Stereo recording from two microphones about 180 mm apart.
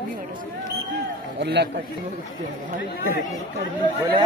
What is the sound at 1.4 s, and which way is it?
Speech, 70° right (ahead or behind).